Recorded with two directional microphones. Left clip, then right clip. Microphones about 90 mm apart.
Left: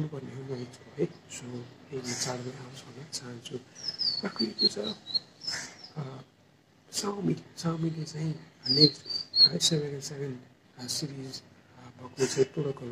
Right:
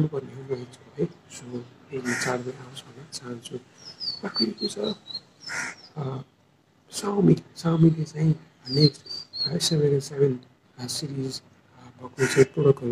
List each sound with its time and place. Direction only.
0.0 s speech: 30° right (ahead or behind)
5.5 s bird: 30° right (ahead or behind)
6.9 s speech: 35° right (ahead or behind)